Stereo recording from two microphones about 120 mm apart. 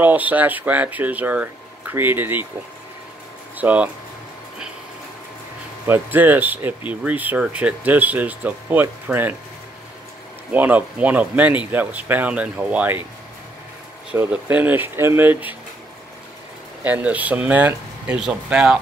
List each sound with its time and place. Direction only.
0.0 s speech: 15° right (ahead or behind)
3.5 s speech: 10° right (ahead or behind)
5.9 s speech: 15° right (ahead or behind)
10.5 s speech: 15° right (ahead or behind)
14.3 s speech: 15° right (ahead or behind)
16.8 s speech: 10° right (ahead or behind)